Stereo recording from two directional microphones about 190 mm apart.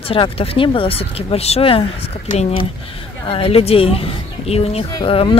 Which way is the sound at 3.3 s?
30° left (ahead or behind).